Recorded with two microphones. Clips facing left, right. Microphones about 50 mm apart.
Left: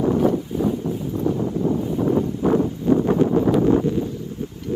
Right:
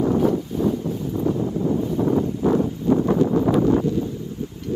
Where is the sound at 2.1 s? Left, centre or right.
Left.